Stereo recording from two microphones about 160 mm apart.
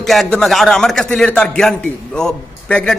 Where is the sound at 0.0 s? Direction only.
Centre (ahead or behind).